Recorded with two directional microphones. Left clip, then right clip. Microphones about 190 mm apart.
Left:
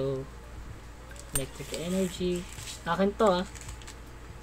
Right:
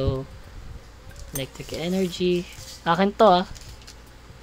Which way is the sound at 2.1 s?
50° right (ahead or behind).